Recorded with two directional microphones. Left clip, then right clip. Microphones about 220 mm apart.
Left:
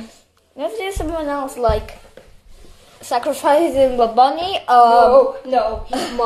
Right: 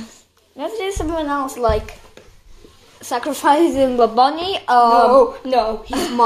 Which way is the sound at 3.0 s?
5° right (ahead or behind).